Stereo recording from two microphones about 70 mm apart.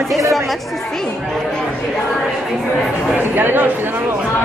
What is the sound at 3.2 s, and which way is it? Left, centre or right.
Speech, right.